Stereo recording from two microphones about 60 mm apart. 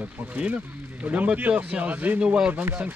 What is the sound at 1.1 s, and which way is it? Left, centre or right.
Speech, right.